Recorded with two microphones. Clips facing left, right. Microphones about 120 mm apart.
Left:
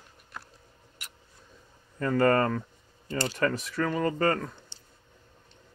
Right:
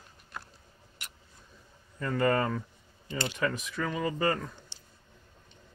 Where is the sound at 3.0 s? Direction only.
40° left (ahead or behind).